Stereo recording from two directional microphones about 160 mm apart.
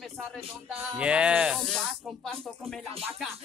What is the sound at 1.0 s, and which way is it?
Speech, 5° right (ahead or behind).